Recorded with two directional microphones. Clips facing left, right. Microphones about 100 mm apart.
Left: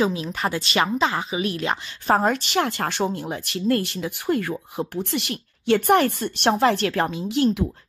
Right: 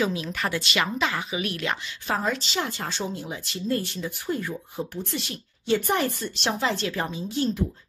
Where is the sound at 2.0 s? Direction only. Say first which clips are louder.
Left 8 dB; 50° left (ahead or behind).